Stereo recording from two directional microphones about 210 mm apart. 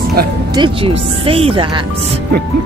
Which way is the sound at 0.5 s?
25° right (ahead or behind).